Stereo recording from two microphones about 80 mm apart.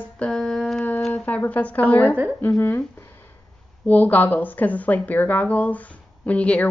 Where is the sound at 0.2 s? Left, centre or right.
Centre.